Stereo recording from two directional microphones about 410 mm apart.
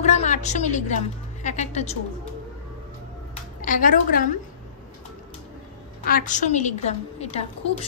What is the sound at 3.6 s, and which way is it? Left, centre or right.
Speech, centre.